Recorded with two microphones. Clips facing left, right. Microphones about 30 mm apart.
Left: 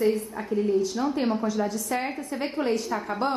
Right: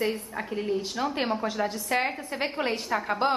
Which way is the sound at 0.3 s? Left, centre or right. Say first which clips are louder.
Left 4 dB; right.